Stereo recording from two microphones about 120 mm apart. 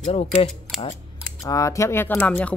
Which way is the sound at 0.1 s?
60° left (ahead or behind).